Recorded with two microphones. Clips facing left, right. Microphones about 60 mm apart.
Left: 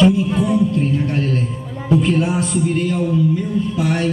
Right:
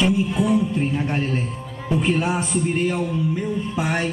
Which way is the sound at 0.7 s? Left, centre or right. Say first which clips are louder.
Left 4 dB; centre.